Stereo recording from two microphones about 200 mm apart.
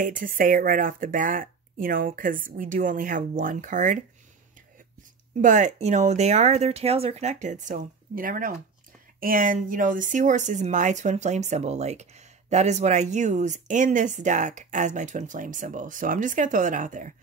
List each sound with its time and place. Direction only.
0.0 s speech: 40° right (ahead or behind)
5.4 s speech: 40° right (ahead or behind)